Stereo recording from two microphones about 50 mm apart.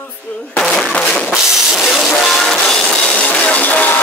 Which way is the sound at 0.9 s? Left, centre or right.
Left.